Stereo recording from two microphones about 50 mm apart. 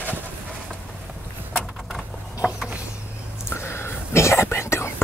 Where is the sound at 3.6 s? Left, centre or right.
Left.